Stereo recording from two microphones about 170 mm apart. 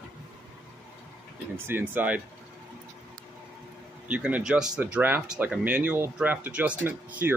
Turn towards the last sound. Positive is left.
turn(degrees=-10)  # may be behind; listen again after turning